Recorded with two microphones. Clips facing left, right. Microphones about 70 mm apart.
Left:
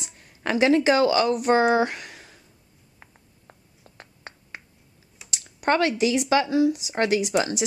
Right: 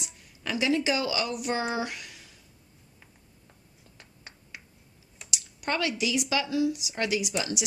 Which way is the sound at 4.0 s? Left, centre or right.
Left.